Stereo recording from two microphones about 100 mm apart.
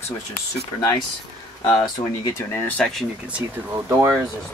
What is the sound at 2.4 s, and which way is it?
Speech, 20° left (ahead or behind).